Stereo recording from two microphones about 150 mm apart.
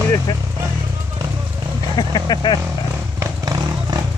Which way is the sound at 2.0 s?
30° left (ahead or behind).